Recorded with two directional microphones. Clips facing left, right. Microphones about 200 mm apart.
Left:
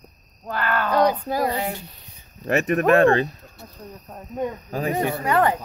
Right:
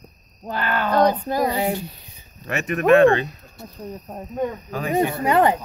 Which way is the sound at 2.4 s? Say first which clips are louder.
Left 2 dB; 35° left (ahead or behind).